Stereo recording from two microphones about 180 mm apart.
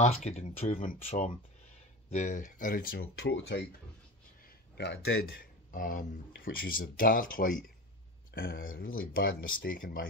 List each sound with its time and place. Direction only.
0.0 s speech: 40° left (ahead or behind); by 3.1 s 55° left (ahead or behind)
3.3 s speech: 70° left (ahead or behind)
4.7 s speech: 70° left (ahead or behind); by 10.0 s 55° left (ahead or behind)